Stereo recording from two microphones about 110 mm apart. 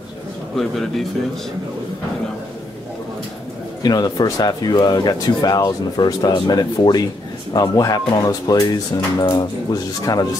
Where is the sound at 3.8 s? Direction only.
35° left (ahead or behind).